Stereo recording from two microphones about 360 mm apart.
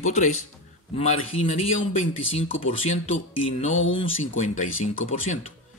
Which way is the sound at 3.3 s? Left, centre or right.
Left.